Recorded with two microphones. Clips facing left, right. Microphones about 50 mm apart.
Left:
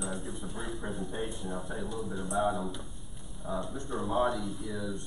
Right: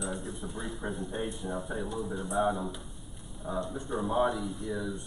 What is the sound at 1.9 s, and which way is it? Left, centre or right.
Speech, centre.